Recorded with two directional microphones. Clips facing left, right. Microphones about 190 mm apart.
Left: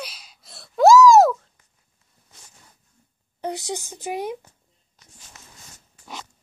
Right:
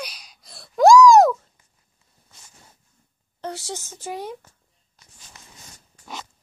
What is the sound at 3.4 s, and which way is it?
Speech, 15° left (ahead or behind).